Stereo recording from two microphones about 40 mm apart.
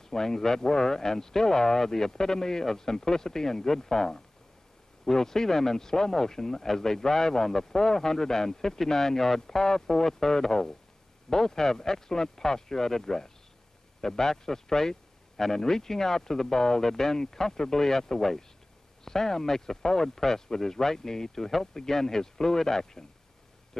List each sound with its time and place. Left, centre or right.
0.0 s speech: centre